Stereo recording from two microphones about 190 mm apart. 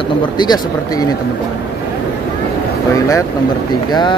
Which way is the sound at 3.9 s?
25° left (ahead or behind).